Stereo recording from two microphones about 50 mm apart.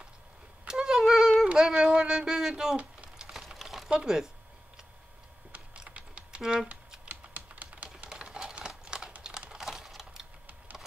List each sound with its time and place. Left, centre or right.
0.7 s a sound: centre
3.9 s speech: centre
5.9 s typing: right
6.4 s speech: centre
7.1 s typing: right
8.1 s a sound: centre
8.5 s computer keyboard: centre
9.5 s typing: centre